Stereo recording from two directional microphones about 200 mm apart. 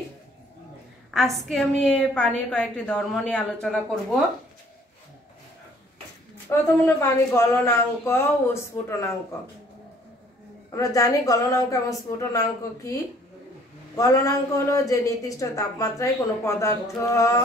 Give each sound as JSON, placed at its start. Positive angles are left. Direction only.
{"t": 1.1, "sound": "a woman's voice", "side_deg": 0}
{"t": 6.5, "sound": "a woman's voice", "side_deg": 15}
{"t": 10.7, "sound": "a woman's voice", "side_deg": 15}